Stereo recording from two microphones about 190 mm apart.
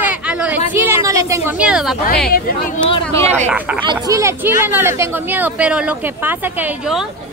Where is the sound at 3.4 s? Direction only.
10° right (ahead or behind).